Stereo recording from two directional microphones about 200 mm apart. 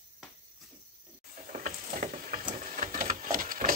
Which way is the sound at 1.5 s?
40° right (ahead or behind).